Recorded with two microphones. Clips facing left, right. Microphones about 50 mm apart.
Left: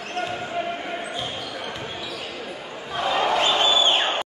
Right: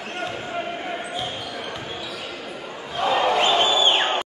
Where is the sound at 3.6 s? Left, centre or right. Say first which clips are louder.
Right 1 dB; right.